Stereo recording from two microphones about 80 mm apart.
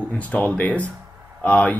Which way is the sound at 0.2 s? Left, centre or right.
Centre.